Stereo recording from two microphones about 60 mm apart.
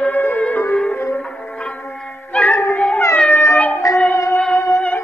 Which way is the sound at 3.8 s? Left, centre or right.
Left.